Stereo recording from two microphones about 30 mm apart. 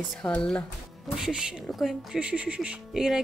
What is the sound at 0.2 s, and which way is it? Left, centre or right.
Speech, left.